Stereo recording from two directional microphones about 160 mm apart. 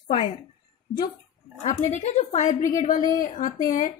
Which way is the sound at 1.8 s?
45° left (ahead or behind).